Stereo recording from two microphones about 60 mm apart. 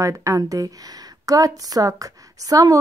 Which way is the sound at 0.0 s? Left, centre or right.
Right.